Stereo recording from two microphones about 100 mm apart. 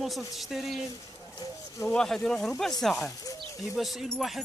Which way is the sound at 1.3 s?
35° left (ahead or behind).